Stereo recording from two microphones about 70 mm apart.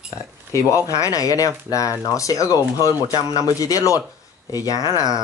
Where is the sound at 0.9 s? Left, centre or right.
Left.